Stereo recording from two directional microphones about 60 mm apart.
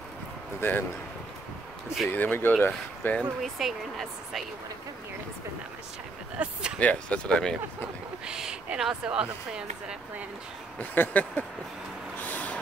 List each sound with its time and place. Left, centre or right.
0.6 s speech: left
2.0 s speech: left
3.5 s speech: centre
6.3 s speech: centre
6.8 s speech: left
8.3 s a sound: centre
8.7 s speech: centre
10.8 s speech: left
12.2 s vehicle: left